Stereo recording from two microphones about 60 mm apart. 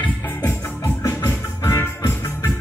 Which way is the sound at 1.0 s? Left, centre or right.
Left.